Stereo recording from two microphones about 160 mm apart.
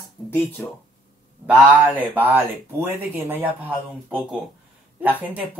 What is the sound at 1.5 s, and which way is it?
Speech, 5° right (ahead or behind).